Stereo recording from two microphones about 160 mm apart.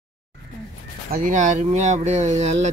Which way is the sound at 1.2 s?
50° right (ahead or behind).